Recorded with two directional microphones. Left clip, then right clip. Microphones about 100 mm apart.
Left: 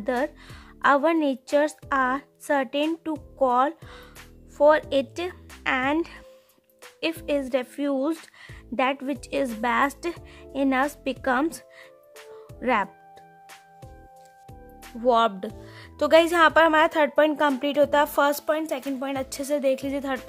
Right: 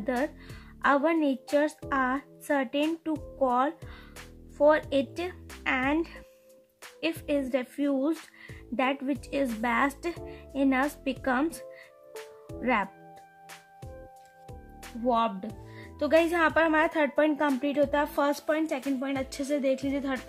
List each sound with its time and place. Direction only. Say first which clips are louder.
0.0 s speech: left 4 dB; 35° left (ahead or behind)
12.1 s music: right 2 dB; centre (ahead or behind)
12.5 s speech: left 4 dB; 35° left (ahead or behind)
15.0 s speech: left 6 dB; 50° left (ahead or behind)
15.4 s speech: left 6 dB; 35° left (ahead or behind)